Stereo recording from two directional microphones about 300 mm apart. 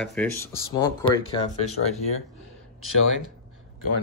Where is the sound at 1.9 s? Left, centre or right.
Left.